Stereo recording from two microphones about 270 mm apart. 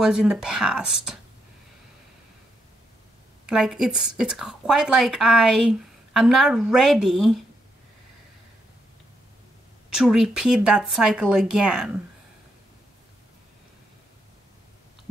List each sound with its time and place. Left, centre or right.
0.0 s speech: centre
3.4 s speech: centre
9.9 s speech: centre